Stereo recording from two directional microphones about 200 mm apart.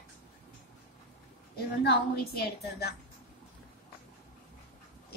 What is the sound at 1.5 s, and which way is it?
A woman's voice, 55° left (ahead or behind).